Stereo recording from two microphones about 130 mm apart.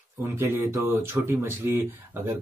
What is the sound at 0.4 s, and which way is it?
Speech, 20° right (ahead or behind).